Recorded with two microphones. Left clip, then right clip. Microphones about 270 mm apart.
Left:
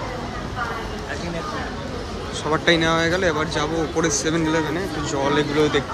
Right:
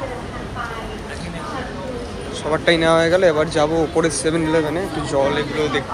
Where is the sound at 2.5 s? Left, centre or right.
Centre.